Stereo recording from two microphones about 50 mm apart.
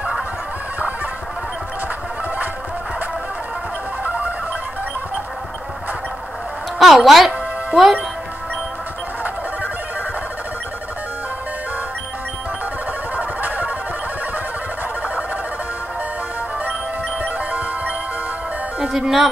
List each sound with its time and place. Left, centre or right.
6.8 s speech: centre
13.1 s a sound: right
17.2 s music: right
18.8 s music: centre